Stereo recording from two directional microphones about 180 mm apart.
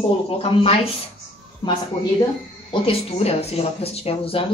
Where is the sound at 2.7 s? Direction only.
35° left (ahead or behind).